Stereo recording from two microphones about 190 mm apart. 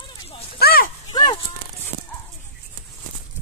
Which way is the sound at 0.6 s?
50° left (ahead or behind).